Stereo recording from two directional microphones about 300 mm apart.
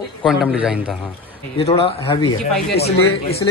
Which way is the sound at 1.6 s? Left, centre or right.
Centre.